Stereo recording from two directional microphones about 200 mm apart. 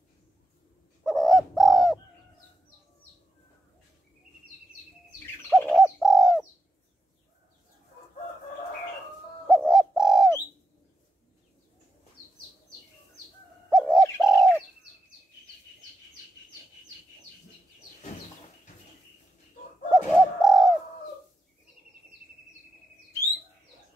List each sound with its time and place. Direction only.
1.0 s bird: centre (ahead or behind)
5.5 s bird: centre (ahead or behind)
9.5 s bird: centre (ahead or behind)
13.7 s bird: centre (ahead or behind)
14.3 s bird: 15° left (ahead or behind)
19.9 s bird: centre (ahead or behind)